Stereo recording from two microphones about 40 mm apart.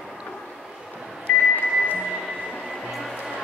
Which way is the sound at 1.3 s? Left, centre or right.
Left.